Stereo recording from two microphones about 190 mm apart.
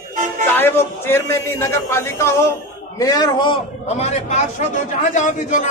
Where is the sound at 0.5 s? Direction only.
10° left (ahead or behind).